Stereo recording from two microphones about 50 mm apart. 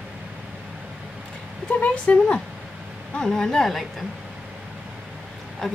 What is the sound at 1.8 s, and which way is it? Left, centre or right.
Speech, left.